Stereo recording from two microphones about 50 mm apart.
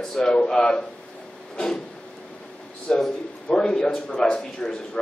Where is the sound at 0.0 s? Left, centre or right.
Centre.